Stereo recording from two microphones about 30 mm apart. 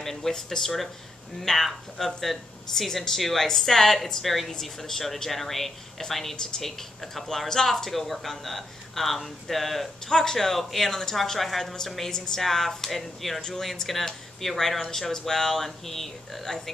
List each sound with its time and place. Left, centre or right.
0.0 s a sound: centre
0.3 s speech: left; by 4.5 s centre
4.5 s speech: centre
11.1 s speech: centre
11.6 s speech: centre